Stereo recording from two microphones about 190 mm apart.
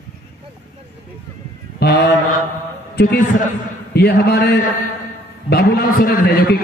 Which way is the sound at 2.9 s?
55° left (ahead or behind).